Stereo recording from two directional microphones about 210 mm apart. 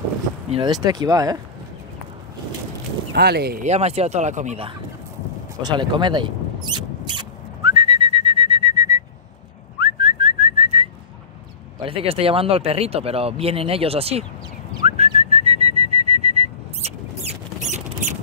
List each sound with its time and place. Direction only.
0.5 s speech: 20° right (ahead or behind)
3.2 s speech: 50° right (ahead or behind)
3.6 s speech: 30° right (ahead or behind)
6.7 s whistling: 20° right (ahead or behind)
11.8 s speech: 25° right (ahead or behind)
14.9 s whistling: 30° right (ahead or behind)
17.6 s rodents: 35° right (ahead or behind)